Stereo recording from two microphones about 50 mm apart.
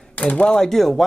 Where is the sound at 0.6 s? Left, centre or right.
Centre.